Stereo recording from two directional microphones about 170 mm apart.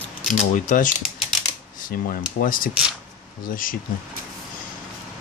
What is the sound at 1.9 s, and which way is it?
Speech, 60° left (ahead or behind).